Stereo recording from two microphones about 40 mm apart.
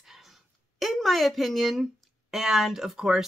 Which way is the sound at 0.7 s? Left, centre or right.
Centre.